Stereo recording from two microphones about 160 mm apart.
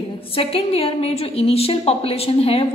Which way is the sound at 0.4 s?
35° left (ahead or behind).